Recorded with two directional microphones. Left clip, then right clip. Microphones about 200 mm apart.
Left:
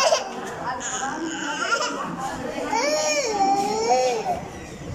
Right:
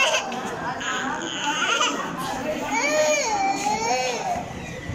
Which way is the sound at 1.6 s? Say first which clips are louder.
Right 1 dB; 20° left (ahead or behind).